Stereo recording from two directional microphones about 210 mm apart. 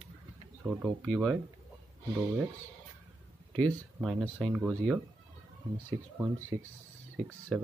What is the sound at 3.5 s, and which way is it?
Speech, centre (ahead or behind).